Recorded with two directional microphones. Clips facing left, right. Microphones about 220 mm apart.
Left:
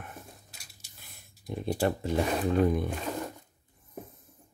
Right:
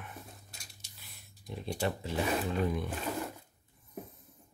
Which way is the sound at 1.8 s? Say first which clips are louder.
Left 5 dB; 50° left (ahead or behind).